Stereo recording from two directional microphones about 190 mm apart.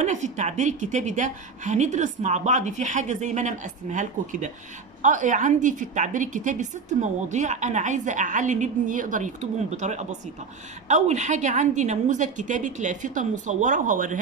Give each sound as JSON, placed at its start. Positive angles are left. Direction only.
{"t": 0.0, "sound": "a woman's voice", "side_deg": -40}